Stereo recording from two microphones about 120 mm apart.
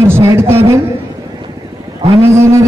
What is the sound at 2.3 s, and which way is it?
Speech, 25° right (ahead or behind).